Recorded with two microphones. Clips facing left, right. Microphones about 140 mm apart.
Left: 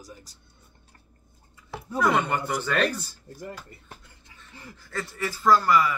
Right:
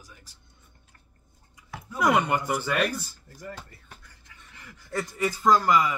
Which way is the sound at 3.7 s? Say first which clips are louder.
Left 3 dB; 25° left (ahead or behind).